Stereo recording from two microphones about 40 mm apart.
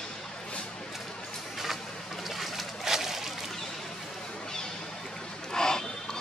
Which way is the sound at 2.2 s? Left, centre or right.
Centre.